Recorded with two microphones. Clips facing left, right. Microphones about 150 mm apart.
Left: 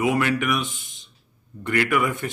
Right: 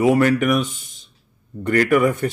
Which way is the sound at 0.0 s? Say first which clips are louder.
Right 6 dB; 35° right (ahead or behind).